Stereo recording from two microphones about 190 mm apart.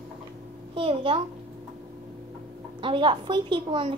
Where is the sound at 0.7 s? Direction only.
30° right (ahead or behind).